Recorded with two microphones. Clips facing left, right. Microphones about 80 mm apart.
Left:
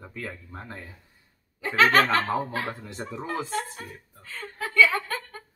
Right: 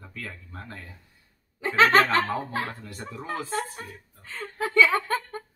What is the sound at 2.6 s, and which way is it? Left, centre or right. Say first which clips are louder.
Speech: left 2 dB; left.